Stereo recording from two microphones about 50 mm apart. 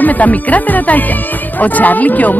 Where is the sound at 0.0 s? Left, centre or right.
Left.